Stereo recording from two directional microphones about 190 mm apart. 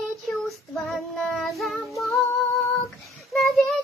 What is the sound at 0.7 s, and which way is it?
Child singing, centre (ahead or behind).